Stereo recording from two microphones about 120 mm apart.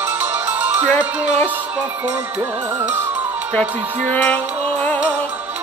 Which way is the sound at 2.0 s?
30° right (ahead or behind).